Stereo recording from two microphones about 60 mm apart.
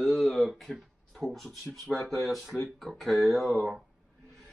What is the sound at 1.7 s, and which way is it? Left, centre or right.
Speech, centre.